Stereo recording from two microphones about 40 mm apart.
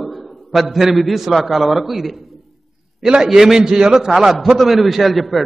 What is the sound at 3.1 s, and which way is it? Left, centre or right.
A man's voice, centre.